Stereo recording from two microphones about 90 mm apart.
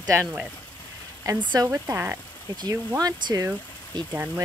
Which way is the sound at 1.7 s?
30° right (ahead or behind).